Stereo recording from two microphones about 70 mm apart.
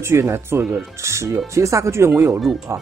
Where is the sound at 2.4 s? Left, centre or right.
Centre.